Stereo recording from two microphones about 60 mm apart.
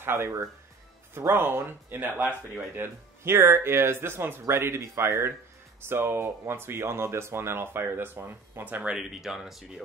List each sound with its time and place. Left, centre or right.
0.0 s speech: right
8.8 s speech: centre